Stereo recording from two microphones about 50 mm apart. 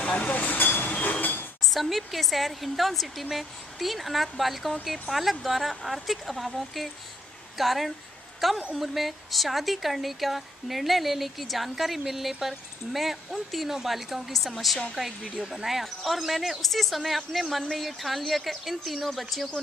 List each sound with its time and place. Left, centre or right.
0.0 s vehicle: left
1.2 s dishes: left
1.6 s speech: centre
15.2 s speech: centre
15.5 s speech: centre